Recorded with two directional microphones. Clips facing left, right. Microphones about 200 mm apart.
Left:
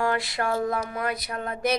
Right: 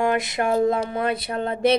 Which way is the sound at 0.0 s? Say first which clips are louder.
Right 4 dB; 20° right (ahead or behind).